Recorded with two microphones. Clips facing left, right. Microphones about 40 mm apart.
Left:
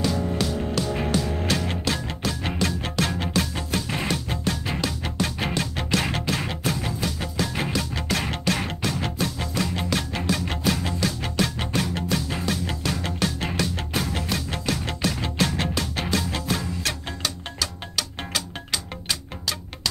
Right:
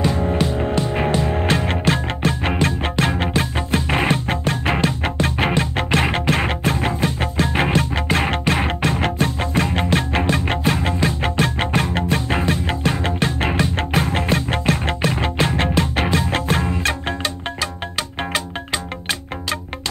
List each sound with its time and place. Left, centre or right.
0.0 s music: right